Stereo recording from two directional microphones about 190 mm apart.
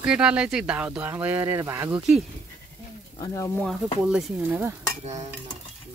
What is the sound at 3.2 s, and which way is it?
Speech, 15° left (ahead or behind).